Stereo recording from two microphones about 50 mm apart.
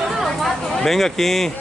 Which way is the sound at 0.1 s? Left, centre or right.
Centre.